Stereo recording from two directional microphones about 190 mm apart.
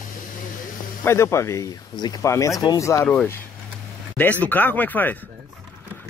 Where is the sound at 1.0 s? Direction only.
15° left (ahead or behind).